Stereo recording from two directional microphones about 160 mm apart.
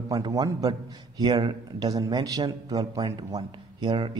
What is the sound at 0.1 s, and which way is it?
A man's voice, 25° right (ahead or behind).